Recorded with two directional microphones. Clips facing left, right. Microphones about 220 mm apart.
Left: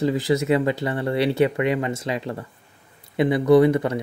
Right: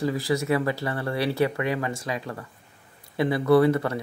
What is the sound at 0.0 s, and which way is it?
Speech, 20° left (ahead or behind).